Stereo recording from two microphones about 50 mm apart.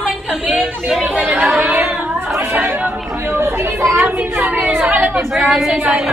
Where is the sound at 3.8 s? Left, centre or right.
Right.